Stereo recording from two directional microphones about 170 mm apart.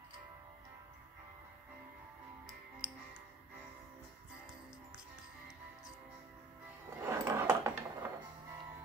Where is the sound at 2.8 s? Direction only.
10° right (ahead or behind).